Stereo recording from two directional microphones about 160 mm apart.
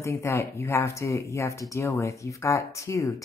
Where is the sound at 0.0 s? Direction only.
15° left (ahead or behind).